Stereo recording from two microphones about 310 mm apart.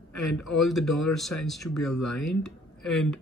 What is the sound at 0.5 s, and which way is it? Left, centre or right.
Speech, centre.